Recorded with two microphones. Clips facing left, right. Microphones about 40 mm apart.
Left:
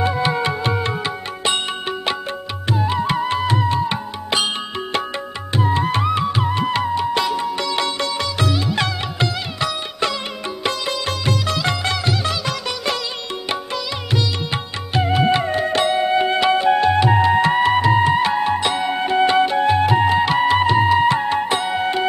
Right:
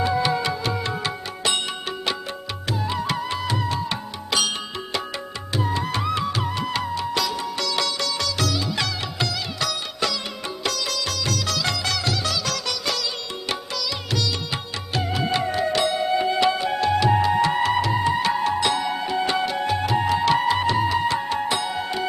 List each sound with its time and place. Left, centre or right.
0.0 s music: left
5.6 s music: left
6.0 s music: left
10.6 s sitar: left
12.0 s music: left
14.1 s music: left
18.9 s music: left